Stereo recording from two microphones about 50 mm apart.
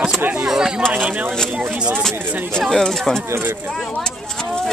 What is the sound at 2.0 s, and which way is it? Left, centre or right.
Speech, centre.